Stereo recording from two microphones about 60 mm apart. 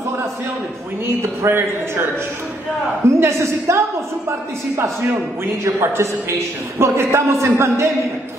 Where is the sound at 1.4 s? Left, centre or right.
Right.